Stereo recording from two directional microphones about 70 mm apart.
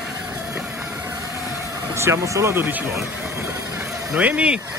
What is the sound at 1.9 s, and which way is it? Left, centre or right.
Speech, right.